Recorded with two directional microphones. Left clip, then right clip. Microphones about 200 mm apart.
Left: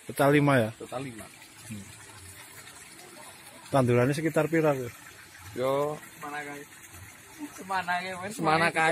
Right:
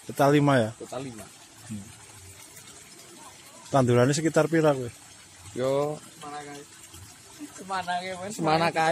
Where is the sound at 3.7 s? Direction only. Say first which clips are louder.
Right 2 dB; 15° right (ahead or behind).